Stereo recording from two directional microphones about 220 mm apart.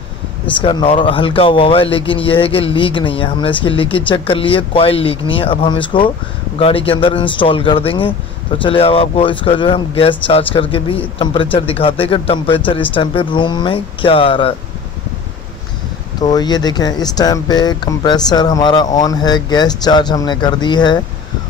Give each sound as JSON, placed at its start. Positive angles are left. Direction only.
{"t": 0.6, "sound": "speech", "side_deg": 20}
{"t": 16.2, "sound": "speech", "side_deg": 20}